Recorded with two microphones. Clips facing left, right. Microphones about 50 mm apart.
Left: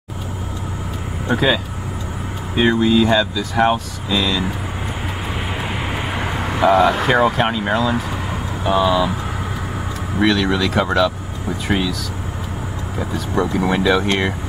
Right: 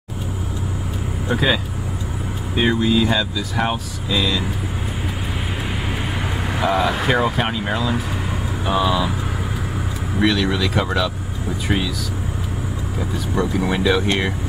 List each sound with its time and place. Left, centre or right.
1.2 s speech: centre
6.1 s speech: centre
10.1 s speech: centre
13.0 s speech: centre